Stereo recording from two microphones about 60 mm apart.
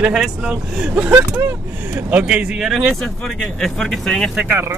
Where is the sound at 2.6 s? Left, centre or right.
Centre.